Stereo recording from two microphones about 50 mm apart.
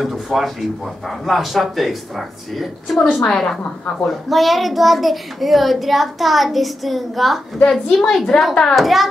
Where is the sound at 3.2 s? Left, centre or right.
Centre.